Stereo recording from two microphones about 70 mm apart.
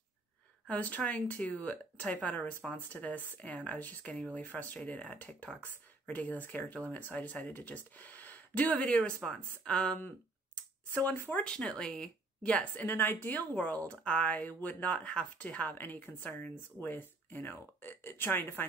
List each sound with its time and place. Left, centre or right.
0.7 s speech: left
11.1 s speech: left
11.4 s speech: centre; by 18.7 s left